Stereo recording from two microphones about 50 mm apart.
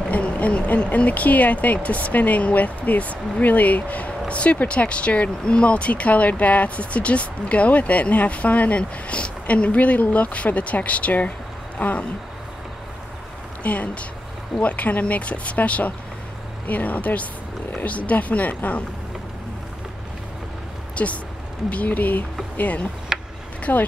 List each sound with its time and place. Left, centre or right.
0.1 s speech: left
13.6 s speech: left
20.9 s speech: left
23.1 s a sound: centre
23.6 s speech: left